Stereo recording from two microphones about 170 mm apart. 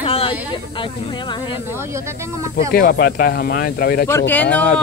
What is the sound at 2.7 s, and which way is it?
Speech, 55° left (ahead or behind).